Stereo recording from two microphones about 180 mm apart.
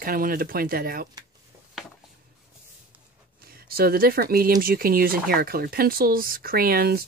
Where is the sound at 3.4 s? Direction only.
55° right (ahead or behind).